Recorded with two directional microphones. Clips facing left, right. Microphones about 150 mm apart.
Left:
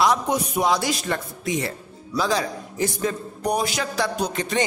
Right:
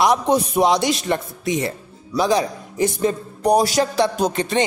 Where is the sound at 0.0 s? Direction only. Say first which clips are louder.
Right 4 dB; 25° right (ahead or behind).